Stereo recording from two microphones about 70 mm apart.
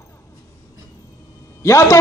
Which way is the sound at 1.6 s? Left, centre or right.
Left.